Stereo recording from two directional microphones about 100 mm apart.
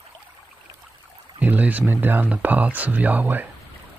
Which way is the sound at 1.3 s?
15° right (ahead or behind).